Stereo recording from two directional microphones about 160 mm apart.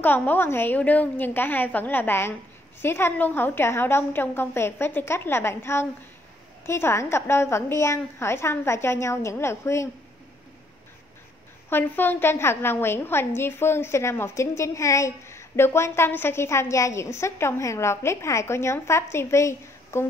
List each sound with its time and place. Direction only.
0.0 s a woman's voice: 10° left (ahead or behind)
11.7 s a woman's voice: 10° left (ahead or behind)